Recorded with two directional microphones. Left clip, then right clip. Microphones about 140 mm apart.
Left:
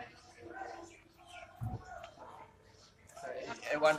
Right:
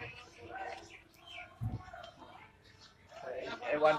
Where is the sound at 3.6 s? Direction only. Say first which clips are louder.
Right 1 dB; 5° right (ahead or behind).